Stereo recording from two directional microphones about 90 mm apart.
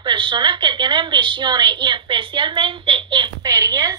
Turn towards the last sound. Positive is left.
turn(degrees=-40)  # may be behind; listen again after turning